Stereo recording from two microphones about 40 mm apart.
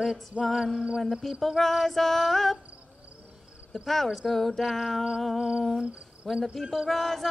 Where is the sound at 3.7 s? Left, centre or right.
Centre.